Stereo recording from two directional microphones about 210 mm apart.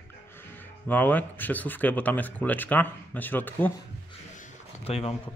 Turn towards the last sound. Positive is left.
turn(degrees=25)  # may be behind; listen again after turning